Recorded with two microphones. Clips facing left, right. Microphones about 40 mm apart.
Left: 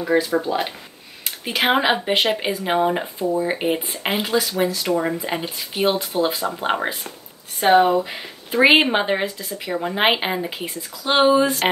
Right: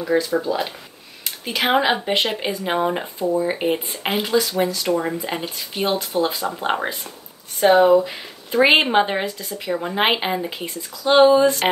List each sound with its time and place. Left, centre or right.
0.0 s speech: centre